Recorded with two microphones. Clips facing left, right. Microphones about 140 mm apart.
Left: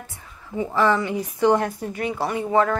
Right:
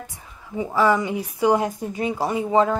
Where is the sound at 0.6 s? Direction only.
10° right (ahead or behind).